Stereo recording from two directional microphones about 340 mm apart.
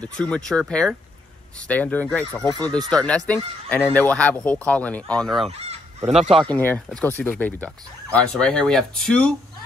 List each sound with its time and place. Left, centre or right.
0.0 s speech: centre
5.5 s goose: centre
6.3 s speech: centre